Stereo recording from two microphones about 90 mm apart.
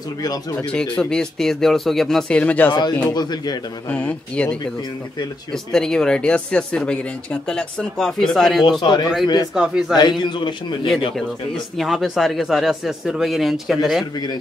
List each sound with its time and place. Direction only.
0.2 s speech: 45° left (ahead or behind)
0.9 s speech: 10° left (ahead or behind)
2.7 s a man's voice: 55° left (ahead or behind)
3.9 s speech: 15° left (ahead or behind)
8.8 s speech: 50° left (ahead or behind)
9.5 s speech: 5° right (ahead or behind)
10.2 s a man's voice: 60° left (ahead or behind)
11.7 s speech: centre (ahead or behind)